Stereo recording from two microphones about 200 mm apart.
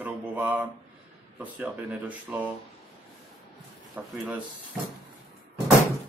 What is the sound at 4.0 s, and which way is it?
Speech, 5° right (ahead or behind).